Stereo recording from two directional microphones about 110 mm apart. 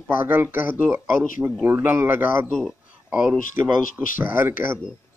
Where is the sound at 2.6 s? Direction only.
5° right (ahead or behind).